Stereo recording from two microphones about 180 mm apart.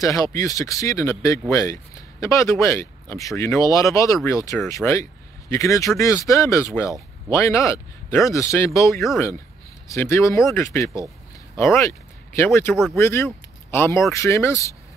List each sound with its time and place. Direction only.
0.0 s speech: 20° left (ahead or behind)
12.9 s speech: 15° left (ahead or behind)